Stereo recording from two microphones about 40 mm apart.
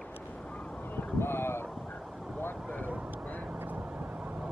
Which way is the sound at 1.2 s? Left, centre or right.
Left.